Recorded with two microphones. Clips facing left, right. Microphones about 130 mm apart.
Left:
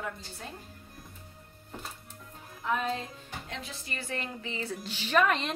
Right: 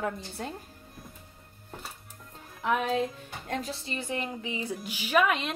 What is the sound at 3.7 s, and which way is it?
A woman's voice, 25° right (ahead or behind).